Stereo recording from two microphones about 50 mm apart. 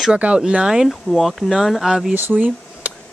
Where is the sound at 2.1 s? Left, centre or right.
Right.